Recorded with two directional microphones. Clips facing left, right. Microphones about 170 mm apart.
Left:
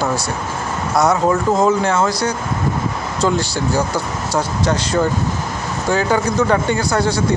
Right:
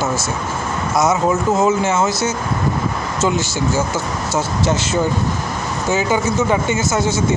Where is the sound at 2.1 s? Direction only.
25° right (ahead or behind).